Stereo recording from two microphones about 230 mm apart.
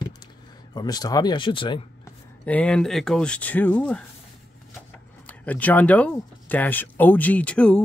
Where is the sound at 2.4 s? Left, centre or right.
Centre.